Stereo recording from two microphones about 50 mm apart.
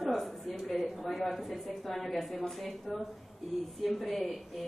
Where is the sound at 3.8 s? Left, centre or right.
Centre.